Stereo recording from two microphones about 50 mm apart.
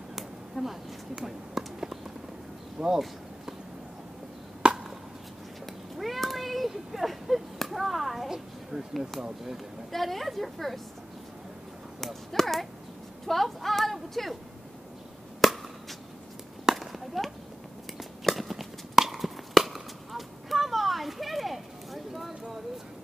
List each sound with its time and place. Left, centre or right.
0.1 s a sound: centre
2.8 s speech: centre
4.6 s chop: centre
5.7 s cat: centre
9.9 s speech: centre
12.0 s a sound: centre
14.2 s speech: centre
15.4 s chop: centre
16.6 s a sound: centre